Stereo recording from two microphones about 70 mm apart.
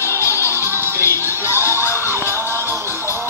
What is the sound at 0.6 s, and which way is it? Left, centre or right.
Music, right.